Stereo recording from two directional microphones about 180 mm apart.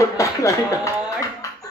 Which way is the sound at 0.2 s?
15° left (ahead or behind).